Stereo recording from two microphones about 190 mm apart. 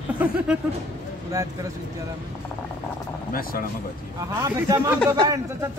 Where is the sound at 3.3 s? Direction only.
50° left (ahead or behind).